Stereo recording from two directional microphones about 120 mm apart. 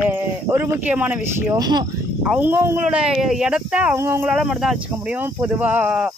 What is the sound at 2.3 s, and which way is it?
Speech, 15° right (ahead or behind).